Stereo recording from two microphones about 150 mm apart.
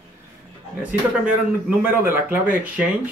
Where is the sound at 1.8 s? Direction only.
10° right (ahead or behind).